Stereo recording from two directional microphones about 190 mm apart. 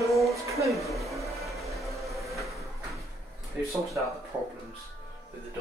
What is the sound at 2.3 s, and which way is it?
Train, centre (ahead or behind).